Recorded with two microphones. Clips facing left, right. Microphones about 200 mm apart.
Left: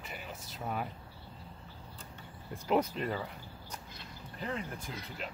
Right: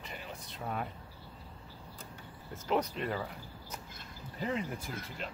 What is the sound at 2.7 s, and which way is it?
Speech, 5° left (ahead or behind).